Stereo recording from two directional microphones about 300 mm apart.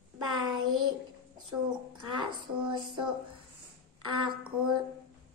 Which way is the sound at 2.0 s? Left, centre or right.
Centre.